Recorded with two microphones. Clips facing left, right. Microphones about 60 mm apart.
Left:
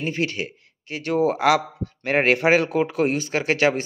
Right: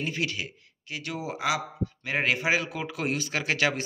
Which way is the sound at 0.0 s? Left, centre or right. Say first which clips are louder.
Left 5 dB; left.